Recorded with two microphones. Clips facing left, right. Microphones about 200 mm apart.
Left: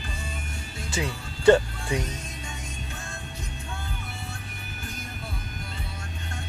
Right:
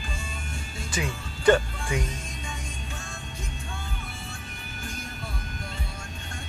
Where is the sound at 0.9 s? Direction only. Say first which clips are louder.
Left 1 dB; 25° left (ahead or behind).